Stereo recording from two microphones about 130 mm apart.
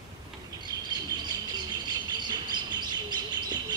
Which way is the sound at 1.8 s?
35° right (ahead or behind).